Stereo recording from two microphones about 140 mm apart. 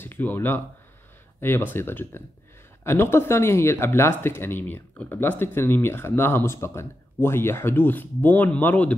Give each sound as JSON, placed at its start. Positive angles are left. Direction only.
{"t": 0.0, "sound": "speech", "side_deg": 15}